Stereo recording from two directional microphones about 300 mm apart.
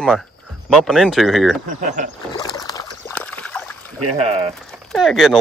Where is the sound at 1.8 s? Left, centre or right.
Right.